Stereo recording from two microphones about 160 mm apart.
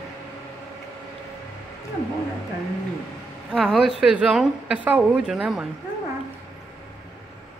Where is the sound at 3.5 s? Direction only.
5° right (ahead or behind).